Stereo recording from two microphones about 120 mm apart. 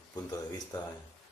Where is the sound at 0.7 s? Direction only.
30° left (ahead or behind).